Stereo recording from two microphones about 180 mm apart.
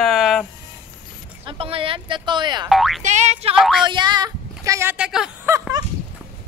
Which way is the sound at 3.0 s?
40° right (ahead or behind).